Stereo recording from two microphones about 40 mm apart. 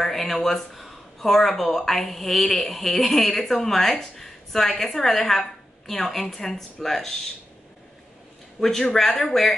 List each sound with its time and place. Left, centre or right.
0.0 s a woman's voice: centre
8.5 s speech: centre